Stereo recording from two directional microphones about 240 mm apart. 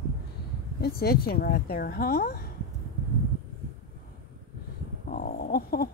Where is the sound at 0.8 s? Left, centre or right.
Left.